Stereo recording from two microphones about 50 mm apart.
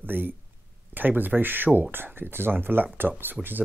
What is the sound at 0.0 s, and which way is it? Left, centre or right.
Speech, right.